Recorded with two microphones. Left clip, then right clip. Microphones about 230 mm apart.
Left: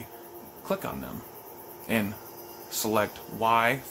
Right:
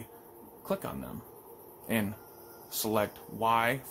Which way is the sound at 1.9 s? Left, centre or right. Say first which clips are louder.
Left 4 dB; centre.